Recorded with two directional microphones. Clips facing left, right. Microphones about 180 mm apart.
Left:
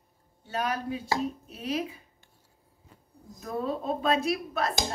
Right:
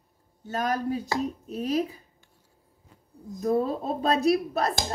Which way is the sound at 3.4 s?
35° right (ahead or behind).